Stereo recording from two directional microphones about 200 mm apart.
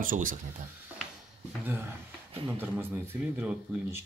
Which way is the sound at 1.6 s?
10° right (ahead or behind).